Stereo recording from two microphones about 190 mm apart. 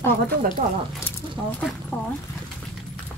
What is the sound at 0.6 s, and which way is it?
Speech, 45° right (ahead or behind).